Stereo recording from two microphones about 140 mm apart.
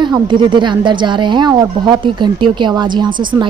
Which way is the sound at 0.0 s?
35° right (ahead or behind).